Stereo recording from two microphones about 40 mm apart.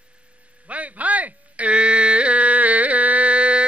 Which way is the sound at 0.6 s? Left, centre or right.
Right.